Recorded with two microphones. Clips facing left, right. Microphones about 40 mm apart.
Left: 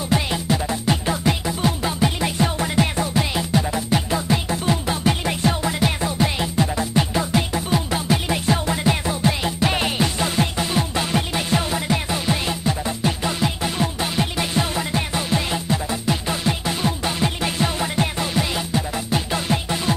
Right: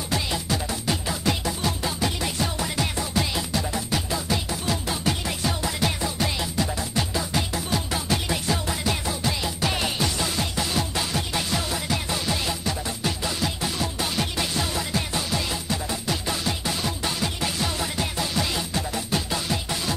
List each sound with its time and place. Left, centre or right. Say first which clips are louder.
0.1 s music: left 5 dB; left
19.3 s music: left 5 dB; left